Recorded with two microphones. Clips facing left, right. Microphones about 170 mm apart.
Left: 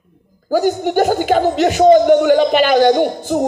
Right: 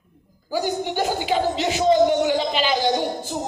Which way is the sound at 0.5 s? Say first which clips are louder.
Left 8 dB; 45° left (ahead or behind).